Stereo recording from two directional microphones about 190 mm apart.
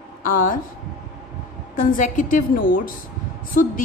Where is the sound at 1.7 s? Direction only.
45° left (ahead or behind).